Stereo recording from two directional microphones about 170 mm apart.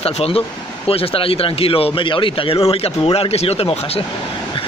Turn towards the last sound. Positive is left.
turn(degrees=35)  # may be behind; listen again after turning